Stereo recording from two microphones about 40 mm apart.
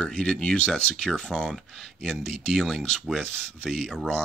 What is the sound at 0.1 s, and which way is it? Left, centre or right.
Speech, centre.